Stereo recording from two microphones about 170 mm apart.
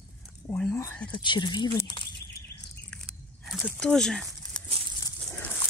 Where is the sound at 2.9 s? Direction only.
5° left (ahead or behind).